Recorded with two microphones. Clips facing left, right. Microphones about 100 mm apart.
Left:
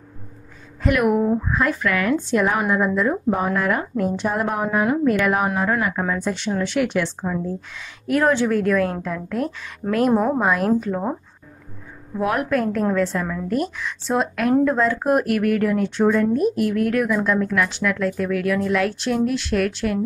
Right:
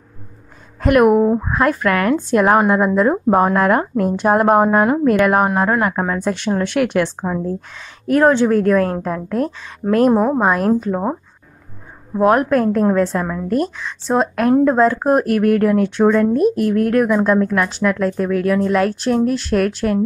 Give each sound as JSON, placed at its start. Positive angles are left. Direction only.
{"t": 0.7, "sound": "a woman's voice", "side_deg": -55}
{"t": 1.5, "sound": "a woman's voice", "side_deg": -50}
{"t": 8.1, "sound": "speech", "side_deg": -30}
{"t": 10.1, "sound": "speech", "side_deg": -15}
{"t": 10.4, "sound": "speech", "side_deg": -35}
{"t": 12.2, "sound": "speech", "side_deg": -40}
{"t": 13.7, "sound": "speech", "side_deg": -30}